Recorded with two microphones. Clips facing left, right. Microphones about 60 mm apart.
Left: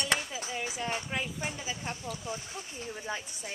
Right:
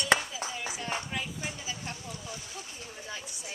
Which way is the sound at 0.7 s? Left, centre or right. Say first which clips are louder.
Left 1 dB; centre.